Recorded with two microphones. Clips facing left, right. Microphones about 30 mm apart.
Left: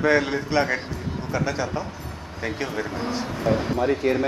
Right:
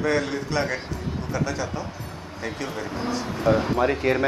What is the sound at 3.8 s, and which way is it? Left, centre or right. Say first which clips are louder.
Speech: even; right.